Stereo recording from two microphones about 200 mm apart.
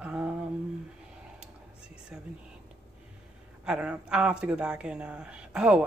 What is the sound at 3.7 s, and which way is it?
A woman's voice, 5° right (ahead or behind).